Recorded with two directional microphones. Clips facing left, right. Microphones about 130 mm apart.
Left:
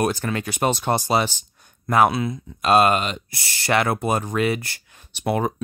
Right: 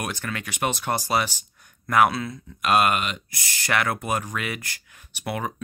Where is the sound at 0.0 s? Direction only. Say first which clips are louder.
Left 8 dB; 35° left (ahead or behind).